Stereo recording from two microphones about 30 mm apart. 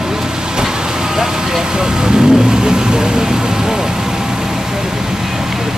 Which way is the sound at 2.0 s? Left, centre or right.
Right.